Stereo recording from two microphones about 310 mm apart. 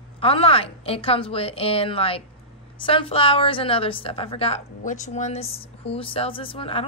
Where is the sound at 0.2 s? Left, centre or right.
Centre.